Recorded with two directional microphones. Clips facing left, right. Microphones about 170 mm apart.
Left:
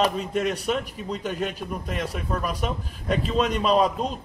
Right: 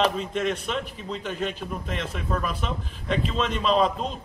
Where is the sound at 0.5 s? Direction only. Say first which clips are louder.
Left 3 dB; 40° left (ahead or behind).